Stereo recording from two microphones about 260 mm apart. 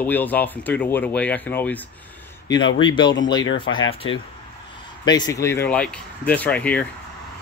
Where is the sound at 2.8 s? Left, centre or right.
Centre.